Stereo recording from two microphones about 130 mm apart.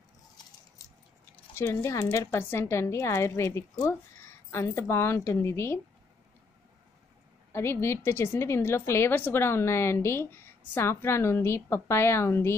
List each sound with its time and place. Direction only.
1.5 s a woman's voice: 20° left (ahead or behind)
7.5 s a woman's voice: 20° left (ahead or behind)